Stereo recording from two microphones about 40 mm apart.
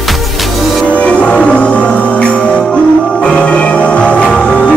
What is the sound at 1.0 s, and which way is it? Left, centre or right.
Music, left.